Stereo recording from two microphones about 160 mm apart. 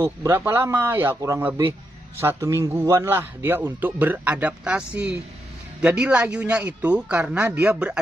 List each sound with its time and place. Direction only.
0.0 s a man's voice: 15° right (ahead or behind)